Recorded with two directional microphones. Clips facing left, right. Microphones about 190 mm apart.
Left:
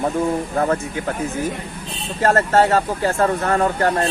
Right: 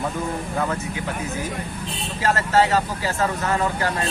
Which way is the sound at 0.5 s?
45° left (ahead or behind).